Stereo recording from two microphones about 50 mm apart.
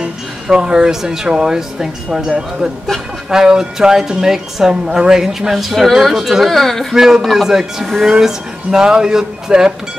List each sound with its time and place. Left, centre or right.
0.0 s speech: centre
3.3 s a woman's voice: centre